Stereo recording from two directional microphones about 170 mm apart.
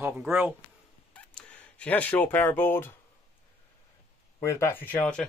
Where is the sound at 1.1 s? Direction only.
5° left (ahead or behind).